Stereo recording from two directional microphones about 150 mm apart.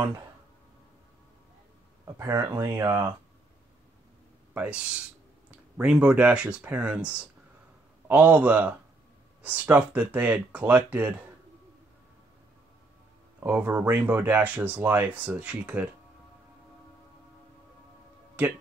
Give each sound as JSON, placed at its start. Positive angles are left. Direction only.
{"t": 2.1, "sound": "speech", "side_deg": -20}
{"t": 4.6, "sound": "speech", "side_deg": -5}
{"t": 13.4, "sound": "speech", "side_deg": -10}
{"t": 18.4, "sound": "speech", "side_deg": -10}